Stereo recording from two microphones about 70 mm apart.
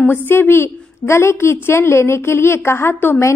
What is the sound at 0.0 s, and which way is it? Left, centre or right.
A woman's voice, left.